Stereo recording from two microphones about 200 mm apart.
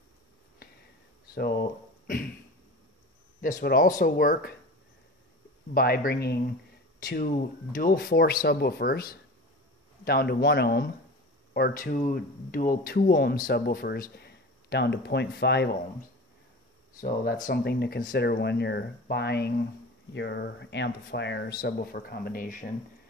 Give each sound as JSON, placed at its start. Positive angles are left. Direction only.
{"t": 1.3, "sound": "speech", "side_deg": 50}
{"t": 3.3, "sound": "speech", "side_deg": 45}
{"t": 5.8, "sound": "speech", "side_deg": 50}
{"t": 17.0, "sound": "speech", "side_deg": 45}